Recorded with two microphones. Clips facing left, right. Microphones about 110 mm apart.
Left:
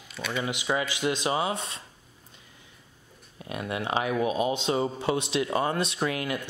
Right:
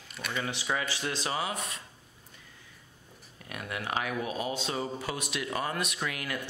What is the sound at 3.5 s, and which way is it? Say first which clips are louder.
Speech: left 5 dB; 25° left (ahead or behind).